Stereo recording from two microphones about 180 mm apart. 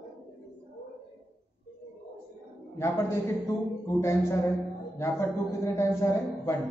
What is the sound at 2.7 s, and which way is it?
A man's voice, 15° left (ahead or behind).